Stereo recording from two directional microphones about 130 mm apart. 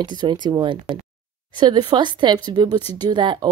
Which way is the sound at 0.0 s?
35° right (ahead or behind).